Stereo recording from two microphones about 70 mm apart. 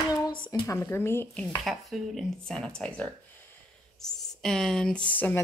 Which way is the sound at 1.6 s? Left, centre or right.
Centre.